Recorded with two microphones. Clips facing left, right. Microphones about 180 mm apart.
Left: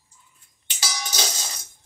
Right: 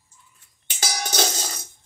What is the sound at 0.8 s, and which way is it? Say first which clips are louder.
Music: right 4 dB; 50° right (ahead or behind).